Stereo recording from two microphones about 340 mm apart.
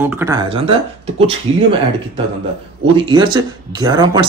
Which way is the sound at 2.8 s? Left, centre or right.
Centre.